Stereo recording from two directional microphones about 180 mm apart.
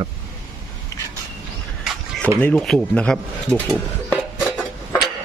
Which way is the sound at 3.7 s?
Centre (ahead or behind).